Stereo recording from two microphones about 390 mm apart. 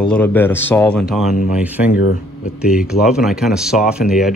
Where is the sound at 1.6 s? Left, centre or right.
Centre.